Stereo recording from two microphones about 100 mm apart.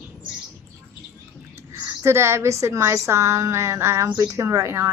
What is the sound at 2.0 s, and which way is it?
A woman's voice, 25° right (ahead or behind).